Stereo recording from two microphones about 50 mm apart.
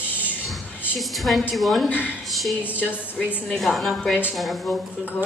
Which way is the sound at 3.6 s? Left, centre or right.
Centre.